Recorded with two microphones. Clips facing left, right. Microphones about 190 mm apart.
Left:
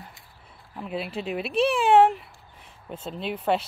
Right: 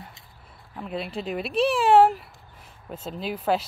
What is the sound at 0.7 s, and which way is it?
Speech, 5° left (ahead or behind).